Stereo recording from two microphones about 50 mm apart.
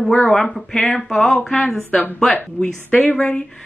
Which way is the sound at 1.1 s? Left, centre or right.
Centre.